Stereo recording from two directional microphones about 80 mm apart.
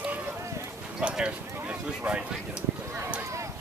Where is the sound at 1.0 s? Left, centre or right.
Centre.